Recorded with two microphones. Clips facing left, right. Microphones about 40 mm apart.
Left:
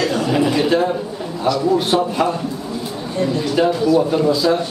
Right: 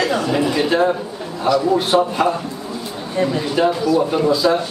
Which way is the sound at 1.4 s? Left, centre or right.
Centre.